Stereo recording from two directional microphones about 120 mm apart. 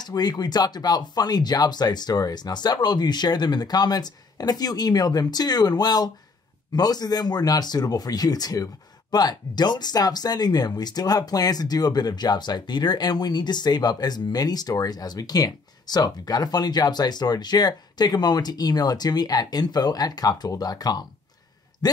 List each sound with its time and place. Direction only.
0.0 s speech: 35° left (ahead or behind)